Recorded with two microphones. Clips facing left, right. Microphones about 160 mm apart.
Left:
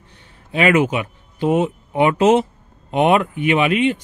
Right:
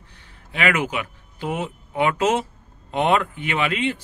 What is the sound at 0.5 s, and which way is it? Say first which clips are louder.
Speech: left 7 dB; 25° left (ahead or behind).